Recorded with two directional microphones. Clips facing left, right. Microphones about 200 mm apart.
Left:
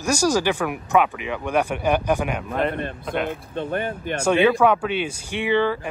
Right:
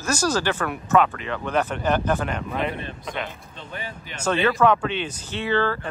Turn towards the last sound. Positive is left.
turn(degrees=15)  # may be behind; listen again after turning